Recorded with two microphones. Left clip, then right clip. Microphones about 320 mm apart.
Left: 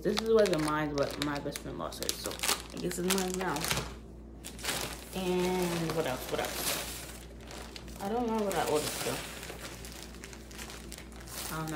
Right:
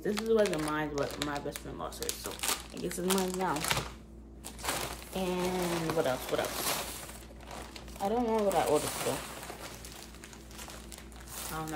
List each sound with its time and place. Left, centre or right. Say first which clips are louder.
0.0 s speech: left 2 dB; centre
3.7 s speech: right 2 dB; right
8.0 s speech: right 3 dB; centre
11.3 s a sound: even; centre